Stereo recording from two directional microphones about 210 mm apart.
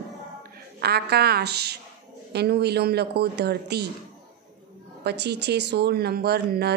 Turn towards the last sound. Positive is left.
turn(degrees=-50)  # may be behind; listen again after turning